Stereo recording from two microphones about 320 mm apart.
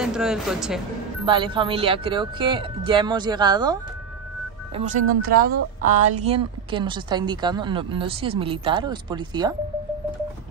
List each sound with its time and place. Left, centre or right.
0.0 s speech: centre
1.2 s speech: centre
4.7 s speech: right